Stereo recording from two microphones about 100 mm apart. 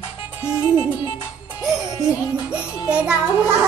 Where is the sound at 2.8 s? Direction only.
10° right (ahead or behind).